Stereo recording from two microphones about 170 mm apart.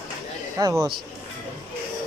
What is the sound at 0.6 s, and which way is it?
Speech, 20° right (ahead or behind).